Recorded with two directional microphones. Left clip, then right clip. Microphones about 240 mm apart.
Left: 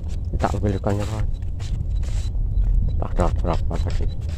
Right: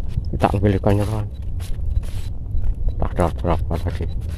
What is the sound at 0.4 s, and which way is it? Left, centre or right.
Speech, right.